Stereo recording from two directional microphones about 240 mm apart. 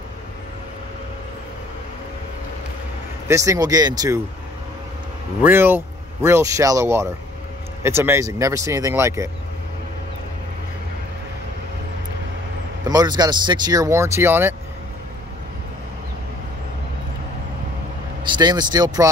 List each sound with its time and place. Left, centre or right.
3.3 s speech: centre
5.4 s speech: centre
12.8 s speech: centre
18.2 s speech: centre